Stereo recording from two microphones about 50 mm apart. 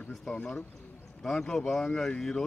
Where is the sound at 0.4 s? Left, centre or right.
Left.